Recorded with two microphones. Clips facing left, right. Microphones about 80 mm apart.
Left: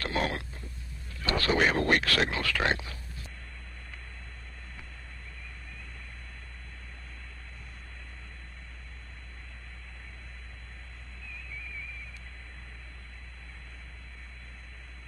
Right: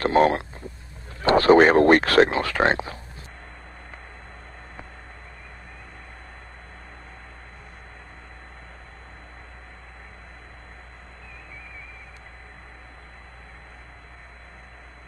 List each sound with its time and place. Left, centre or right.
0.0 s speech: right